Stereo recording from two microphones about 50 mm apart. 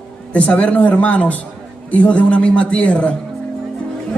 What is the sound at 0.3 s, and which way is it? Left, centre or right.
Speech, left.